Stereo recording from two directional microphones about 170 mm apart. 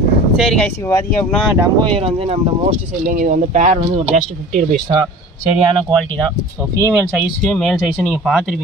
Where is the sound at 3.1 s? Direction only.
50° right (ahead or behind).